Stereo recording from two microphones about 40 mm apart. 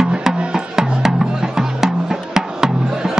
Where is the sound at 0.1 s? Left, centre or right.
Centre.